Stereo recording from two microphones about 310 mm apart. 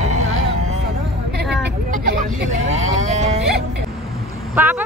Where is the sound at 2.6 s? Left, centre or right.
Right.